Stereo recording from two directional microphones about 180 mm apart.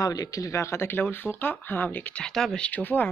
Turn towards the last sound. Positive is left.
turn(degrees=10)  # may be behind; listen again after turning